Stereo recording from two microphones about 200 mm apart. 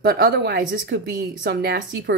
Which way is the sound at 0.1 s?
55° right (ahead or behind).